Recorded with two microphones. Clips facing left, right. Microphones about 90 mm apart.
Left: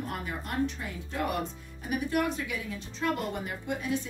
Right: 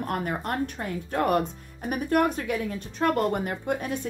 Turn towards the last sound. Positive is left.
turn(degrees=-55)  # may be behind; listen again after turning